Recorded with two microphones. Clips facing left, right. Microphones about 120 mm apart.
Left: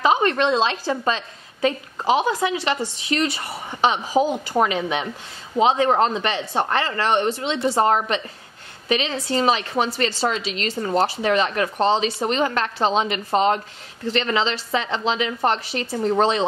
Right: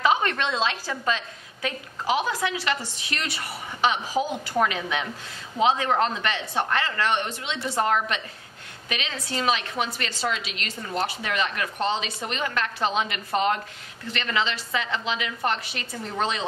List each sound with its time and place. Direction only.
0.0 s a woman's voice: 30° left (ahead or behind)